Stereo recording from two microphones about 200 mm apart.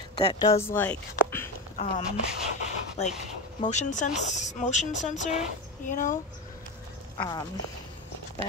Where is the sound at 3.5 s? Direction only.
35° left (ahead or behind).